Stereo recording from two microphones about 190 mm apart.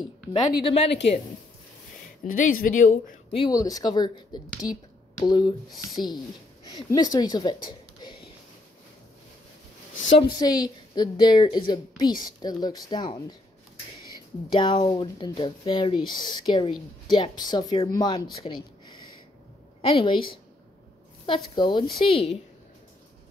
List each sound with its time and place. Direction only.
0.3 s speech: 30° left (ahead or behind)
2.2 s speech: 45° left (ahead or behind)
3.3 s speech: 20° left (ahead or behind)
10.0 s speech: 30° left (ahead or behind)
14.5 s speech: 25° left (ahead or behind)
21.3 s speech: 25° left (ahead or behind)